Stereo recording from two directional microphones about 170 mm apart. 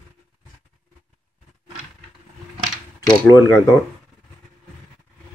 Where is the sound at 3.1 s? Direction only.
20° left (ahead or behind).